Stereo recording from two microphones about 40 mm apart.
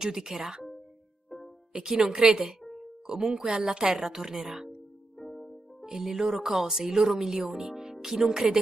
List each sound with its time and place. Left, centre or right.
0.0 s speech: centre
1.7 s speech: centre
2.7 s music: centre
3.6 s speech: centre
5.2 s music: centre
5.9 s speech: centre